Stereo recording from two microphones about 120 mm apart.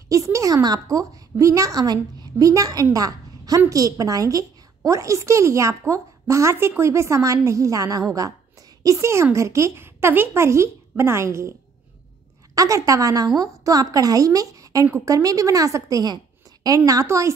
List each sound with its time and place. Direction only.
0.1 s a woman's voice: 25° right (ahead or behind)
12.5 s a woman's voice: 30° right (ahead or behind)